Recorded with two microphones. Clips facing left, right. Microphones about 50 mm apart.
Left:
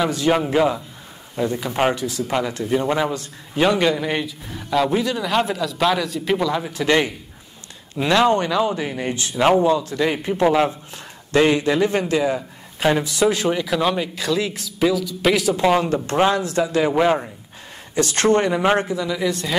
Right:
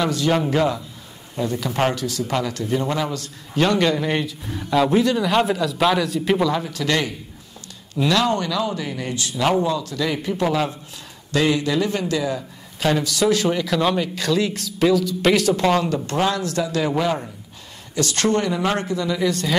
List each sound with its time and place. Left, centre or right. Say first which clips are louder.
0.0 s a man's voice: left 1 dB; centre
6.6 s a man's voice: left 3 dB; left
15.8 s speech: left 3 dB; left
18.9 s speech: right 1 dB; centre